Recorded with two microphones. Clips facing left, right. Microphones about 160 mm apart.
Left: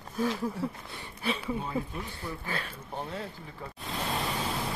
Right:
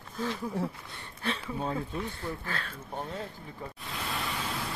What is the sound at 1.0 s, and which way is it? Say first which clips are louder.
Speech: left 2 dB; 10° left (ahead or behind).